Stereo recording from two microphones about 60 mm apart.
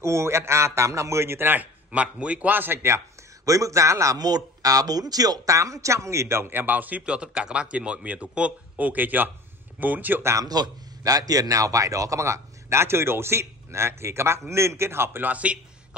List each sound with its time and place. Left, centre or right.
0.0 s a man's voice: right
1.5 s a man's voice: right
2.5 s speech: right
3.4 s speech: right
7.1 s a man's voice: centre
10.5 s a man's voice: right
15.2 s a man's voice: right